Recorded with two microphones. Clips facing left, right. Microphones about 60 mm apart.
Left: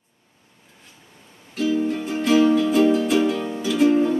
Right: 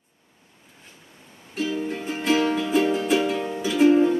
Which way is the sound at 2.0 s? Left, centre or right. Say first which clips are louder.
Left 4 dB; right.